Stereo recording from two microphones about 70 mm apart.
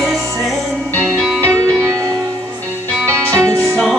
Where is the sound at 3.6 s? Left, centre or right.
Centre.